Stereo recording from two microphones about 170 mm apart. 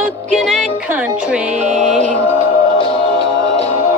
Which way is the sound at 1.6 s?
45° right (ahead or behind).